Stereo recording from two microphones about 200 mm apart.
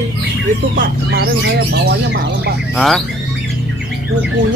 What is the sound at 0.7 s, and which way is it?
Speech, 50° right (ahead or behind).